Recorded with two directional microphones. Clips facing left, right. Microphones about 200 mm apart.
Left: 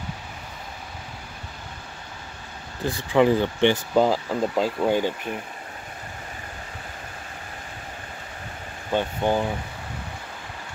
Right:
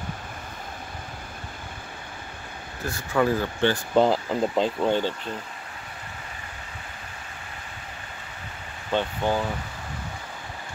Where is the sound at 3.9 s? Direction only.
5° left (ahead or behind).